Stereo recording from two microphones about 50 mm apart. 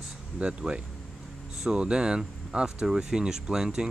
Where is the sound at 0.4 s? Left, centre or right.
Right.